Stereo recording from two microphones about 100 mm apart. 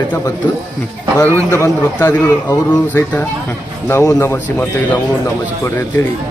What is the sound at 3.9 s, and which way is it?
A man's voice, 30° left (ahead or behind).